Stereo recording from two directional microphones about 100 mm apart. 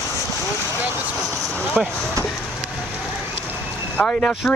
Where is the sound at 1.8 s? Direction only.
5° right (ahead or behind).